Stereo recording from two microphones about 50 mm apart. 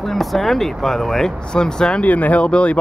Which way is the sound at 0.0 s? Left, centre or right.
Centre.